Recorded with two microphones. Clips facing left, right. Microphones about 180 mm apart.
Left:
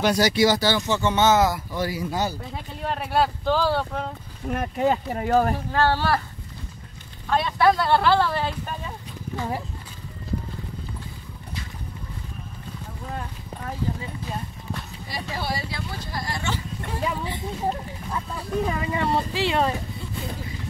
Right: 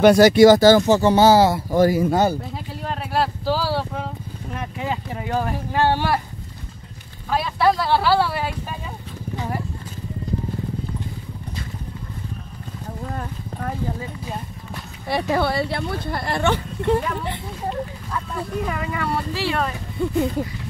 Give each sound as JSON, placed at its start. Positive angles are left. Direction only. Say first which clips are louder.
{"t": 0.0, "sound": "speech", "louder": "right 9 dB", "side_deg": -55}
{"t": 1.7, "sound": "speech", "louder": "right 10 dB", "side_deg": -45}
{"t": 2.8, "sound": "speech", "louder": "even", "side_deg": 0}
{"t": 4.6, "sound": "speech", "louder": "left 5 dB", "side_deg": 45}
{"t": 5.7, "sound": "speech", "louder": "right 2 dB", "side_deg": -15}
{"t": 7.2, "sound": "speech", "louder": "even", "side_deg": -5}
{"t": 15.0, "sound": "speech", "louder": "right 10 dB", "side_deg": -65}
{"t": 18.7, "sound": "speech", "louder": "left 1 dB", "side_deg": 25}
{"t": 20.0, "sound": "speech", "louder": "right 13 dB", "side_deg": -60}